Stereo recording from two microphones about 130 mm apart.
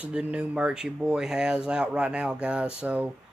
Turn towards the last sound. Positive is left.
turn(degrees=-10)  # may be behind; listen again after turning